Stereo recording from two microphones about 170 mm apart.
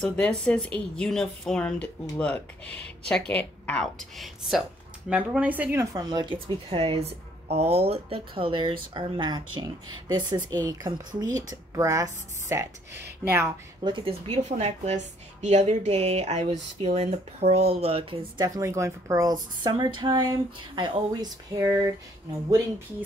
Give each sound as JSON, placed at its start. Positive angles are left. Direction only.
{"t": 0.0, "sound": "speech", "side_deg": 5}
{"t": 12.9, "sound": "speech", "side_deg": -80}
{"t": 13.8, "sound": "a woman's voice", "side_deg": -30}
{"t": 18.4, "sound": "speech", "side_deg": -15}